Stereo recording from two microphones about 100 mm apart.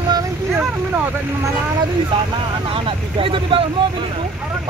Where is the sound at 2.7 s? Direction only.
60° right (ahead or behind).